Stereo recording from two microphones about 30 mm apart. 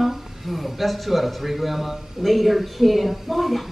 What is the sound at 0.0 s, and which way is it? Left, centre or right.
A man's voice, centre.